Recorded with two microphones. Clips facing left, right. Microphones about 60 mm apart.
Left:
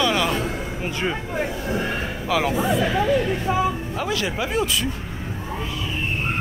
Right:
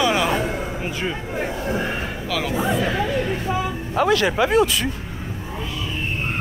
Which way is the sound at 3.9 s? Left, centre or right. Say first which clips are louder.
Right 7 dB; right.